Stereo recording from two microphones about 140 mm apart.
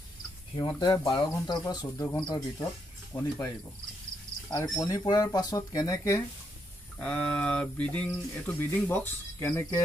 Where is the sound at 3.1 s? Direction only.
20° left (ahead or behind).